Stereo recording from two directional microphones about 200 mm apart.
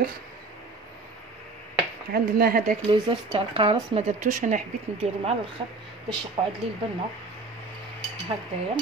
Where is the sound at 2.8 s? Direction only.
25° right (ahead or behind).